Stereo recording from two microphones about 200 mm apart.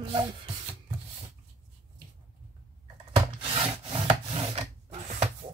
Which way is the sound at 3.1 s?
25° right (ahead or behind).